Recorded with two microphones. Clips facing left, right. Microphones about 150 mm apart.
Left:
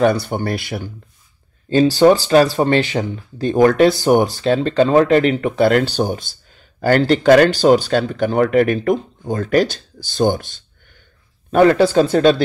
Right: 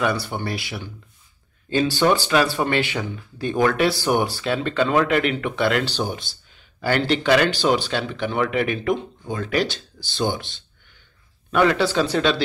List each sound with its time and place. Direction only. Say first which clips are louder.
0.0 s speech: left 7 dB; 45° left (ahead or behind)